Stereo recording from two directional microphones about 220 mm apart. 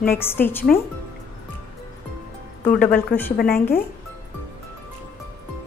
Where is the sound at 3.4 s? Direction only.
45° left (ahead or behind).